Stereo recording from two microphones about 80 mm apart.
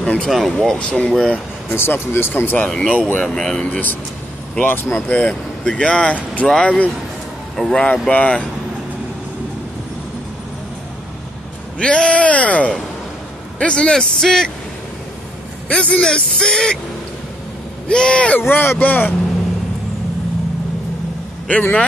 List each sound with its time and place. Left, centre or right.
0.0 s speech: centre
1.8 s speech: left
2.7 s speech: centre
4.6 s speech: left
5.1 s speech: centre
11.8 s speech: centre
15.7 s speech: centre
17.8 s speech: centre
18.4 s speech: left
21.5 s speech: centre